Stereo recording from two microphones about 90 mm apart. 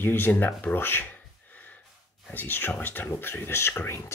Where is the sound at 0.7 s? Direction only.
25° left (ahead or behind).